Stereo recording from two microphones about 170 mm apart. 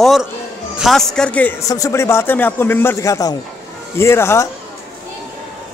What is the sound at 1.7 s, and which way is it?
A man's voice, 15° left (ahead or behind).